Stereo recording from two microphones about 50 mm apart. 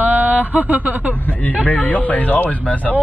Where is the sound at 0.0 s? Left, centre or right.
Right.